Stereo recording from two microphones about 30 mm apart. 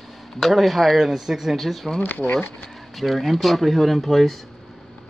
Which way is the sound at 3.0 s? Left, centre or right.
Centre.